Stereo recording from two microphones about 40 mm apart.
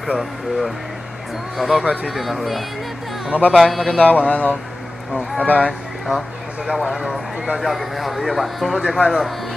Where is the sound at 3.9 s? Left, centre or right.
Left.